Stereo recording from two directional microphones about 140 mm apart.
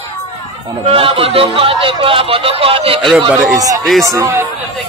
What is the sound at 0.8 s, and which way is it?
Speech, 40° right (ahead or behind).